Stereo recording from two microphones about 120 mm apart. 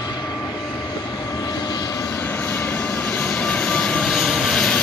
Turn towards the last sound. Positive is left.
turn(degrees=5)  # may be behind; listen again after turning